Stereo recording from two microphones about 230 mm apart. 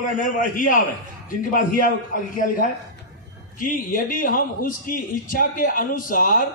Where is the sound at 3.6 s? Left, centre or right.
Left.